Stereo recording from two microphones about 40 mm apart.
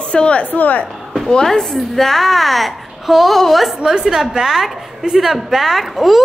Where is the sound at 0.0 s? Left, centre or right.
Left.